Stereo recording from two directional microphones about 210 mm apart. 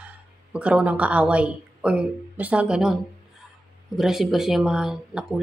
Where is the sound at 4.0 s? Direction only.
Centre (ahead or behind).